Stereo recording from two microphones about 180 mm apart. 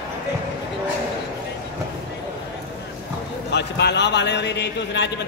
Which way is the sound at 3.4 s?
70° left (ahead or behind).